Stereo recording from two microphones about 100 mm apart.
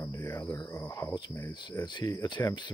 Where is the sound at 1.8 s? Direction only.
50° left (ahead or behind).